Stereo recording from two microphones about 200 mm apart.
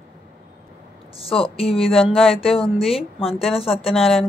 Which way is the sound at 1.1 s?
30° left (ahead or behind).